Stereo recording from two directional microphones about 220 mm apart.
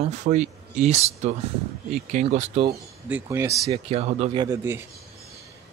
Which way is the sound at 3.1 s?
10° right (ahead or behind).